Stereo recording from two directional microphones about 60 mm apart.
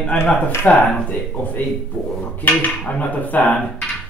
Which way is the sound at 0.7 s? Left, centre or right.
Left.